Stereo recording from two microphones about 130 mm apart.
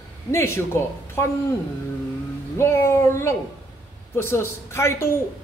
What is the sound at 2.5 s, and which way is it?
A man's voice, 20° left (ahead or behind).